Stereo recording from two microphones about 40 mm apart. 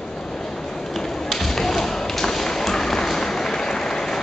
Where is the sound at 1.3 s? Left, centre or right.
Centre.